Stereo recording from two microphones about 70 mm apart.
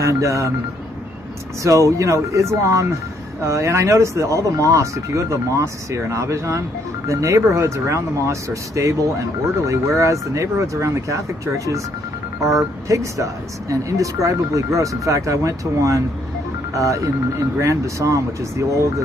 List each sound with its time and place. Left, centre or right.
0.0 s speech: right
1.6 s speech: right
12.8 s speech: right